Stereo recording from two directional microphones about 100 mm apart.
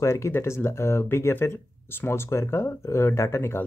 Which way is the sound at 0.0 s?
30° left (ahead or behind).